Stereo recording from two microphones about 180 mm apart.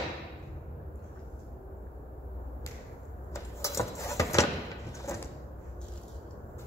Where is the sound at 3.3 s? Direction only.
15° left (ahead or behind).